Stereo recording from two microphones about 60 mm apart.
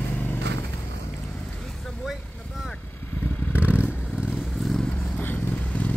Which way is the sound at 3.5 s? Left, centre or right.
Right.